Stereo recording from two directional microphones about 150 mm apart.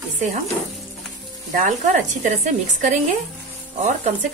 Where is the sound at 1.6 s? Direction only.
55° right (ahead or behind).